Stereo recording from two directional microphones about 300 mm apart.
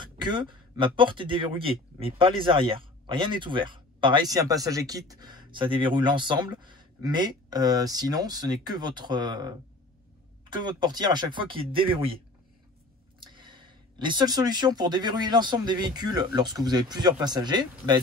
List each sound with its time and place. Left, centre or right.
0.0 s speech: centre
13.2 s speech: centre